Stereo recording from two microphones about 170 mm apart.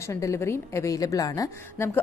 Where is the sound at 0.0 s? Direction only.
20° left (ahead or behind).